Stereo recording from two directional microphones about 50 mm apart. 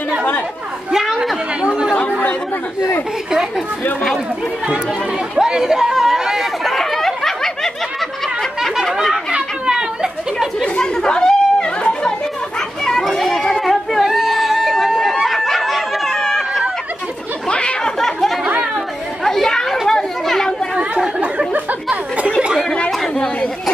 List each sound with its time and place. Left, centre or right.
0.9 s chatter: centre
1.6 s chatter: centre
3.3 s speech: centre
5.3 s chatter: centre
6.6 s a sound: centre
8.9 s chatter: centre
10.6 s chatter: centre
12.5 s children playing: centre
16.1 s chatter: centre
17.5 s a sound: centre
17.9 s a sound: centre
19.2 s chatter: centre
20.7 s chatter: centre